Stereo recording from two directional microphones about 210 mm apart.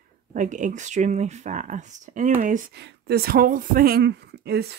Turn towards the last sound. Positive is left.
turn(degrees=-50)  # may be behind; listen again after turning